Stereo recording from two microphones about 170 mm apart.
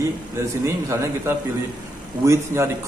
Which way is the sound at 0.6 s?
15° right (ahead or behind).